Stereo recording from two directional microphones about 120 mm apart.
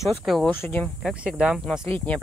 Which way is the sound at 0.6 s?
15° left (ahead or behind).